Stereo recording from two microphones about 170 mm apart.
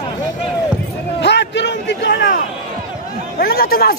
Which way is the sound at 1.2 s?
90° left.